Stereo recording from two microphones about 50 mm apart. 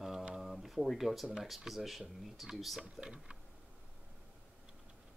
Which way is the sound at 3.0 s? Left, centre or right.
Centre.